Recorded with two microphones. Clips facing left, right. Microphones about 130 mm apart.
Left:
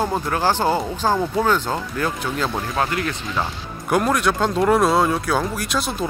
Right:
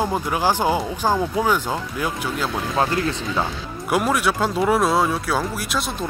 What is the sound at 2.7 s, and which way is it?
Speech, 25° right (ahead or behind).